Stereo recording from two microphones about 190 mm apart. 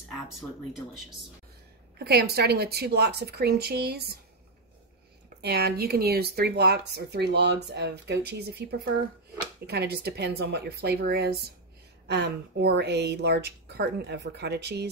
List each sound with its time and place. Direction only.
0.3 s speech: centre (ahead or behind)
2.0 s speech: 55° right (ahead or behind)
5.4 s speech: 60° right (ahead or behind)